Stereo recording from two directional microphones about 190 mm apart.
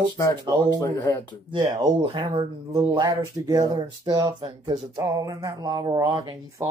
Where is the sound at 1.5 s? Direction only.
25° right (ahead or behind).